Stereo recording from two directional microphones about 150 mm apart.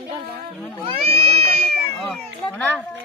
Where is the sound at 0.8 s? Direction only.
40° right (ahead or behind).